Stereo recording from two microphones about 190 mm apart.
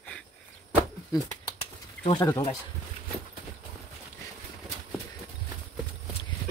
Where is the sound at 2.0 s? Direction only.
30° left (ahead or behind).